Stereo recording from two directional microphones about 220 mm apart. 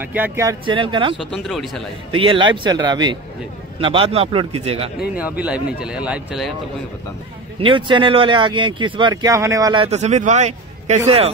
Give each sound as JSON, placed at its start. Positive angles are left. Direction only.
{"t": 0.0, "sound": "speech", "side_deg": -10}
{"t": 1.3, "sound": "speech", "side_deg": 0}
{"t": 2.1, "sound": "speech", "side_deg": -20}
{"t": 5.4, "sound": "speech", "side_deg": -5}
{"t": 7.6, "sound": "speech", "side_deg": -20}
{"t": 9.8, "sound": "a man's voice", "side_deg": -30}